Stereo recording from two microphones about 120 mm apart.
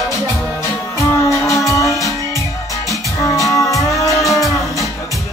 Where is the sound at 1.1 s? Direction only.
25° left (ahead or behind).